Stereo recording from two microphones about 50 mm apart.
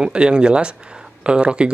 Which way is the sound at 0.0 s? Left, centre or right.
Centre.